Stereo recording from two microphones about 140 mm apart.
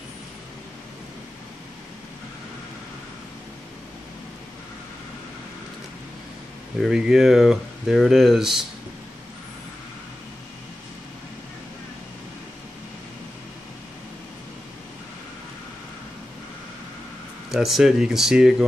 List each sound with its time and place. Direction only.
6.8 s speech: 5° right (ahead or behind)
17.5 s speech: centre (ahead or behind)